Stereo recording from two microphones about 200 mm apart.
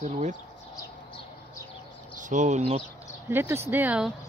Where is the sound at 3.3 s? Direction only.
10° right (ahead or behind).